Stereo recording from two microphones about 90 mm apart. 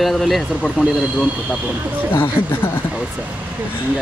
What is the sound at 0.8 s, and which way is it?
Speech, 10° right (ahead or behind).